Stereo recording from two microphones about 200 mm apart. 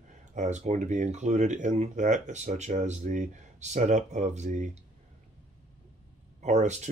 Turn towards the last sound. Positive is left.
turn(degrees=-35)  # may be behind; listen again after turning